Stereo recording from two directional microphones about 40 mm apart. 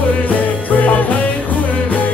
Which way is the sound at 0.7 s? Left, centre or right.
Left.